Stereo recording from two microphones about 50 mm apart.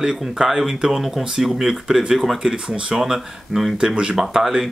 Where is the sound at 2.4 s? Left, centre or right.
Centre.